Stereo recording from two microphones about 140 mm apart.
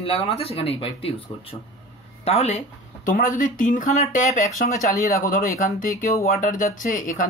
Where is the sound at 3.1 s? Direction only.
70° left (ahead or behind).